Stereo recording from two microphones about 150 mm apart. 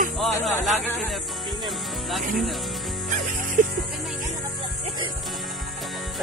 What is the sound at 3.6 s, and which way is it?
Music, 60° right (ahead or behind).